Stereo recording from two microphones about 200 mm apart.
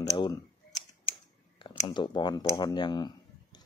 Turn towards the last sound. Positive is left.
turn(degrees=20)  # may be behind; listen again after turning